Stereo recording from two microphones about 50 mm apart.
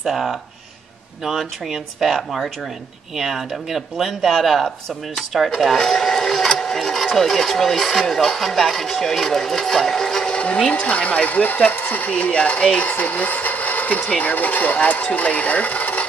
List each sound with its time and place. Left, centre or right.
0.0 s speech: centre
5.5 s printer: centre
7.2 s speech: centre; by 11.7 s left
11.7 s speech: left